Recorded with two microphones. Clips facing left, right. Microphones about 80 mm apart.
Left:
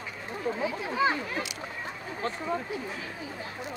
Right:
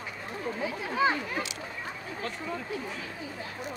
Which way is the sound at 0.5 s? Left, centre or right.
Centre.